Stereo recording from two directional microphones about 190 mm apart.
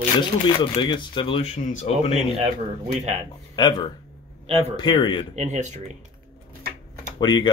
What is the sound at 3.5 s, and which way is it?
Speech, 25° left (ahead or behind).